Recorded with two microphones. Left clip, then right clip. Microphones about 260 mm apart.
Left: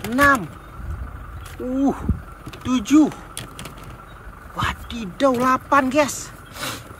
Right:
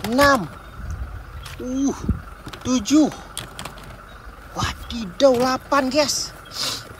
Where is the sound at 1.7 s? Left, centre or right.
Centre.